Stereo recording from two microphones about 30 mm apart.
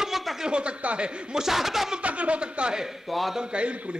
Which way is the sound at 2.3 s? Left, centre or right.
Right.